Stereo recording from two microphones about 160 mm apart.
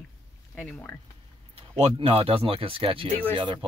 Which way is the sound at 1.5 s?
35° right (ahead or behind).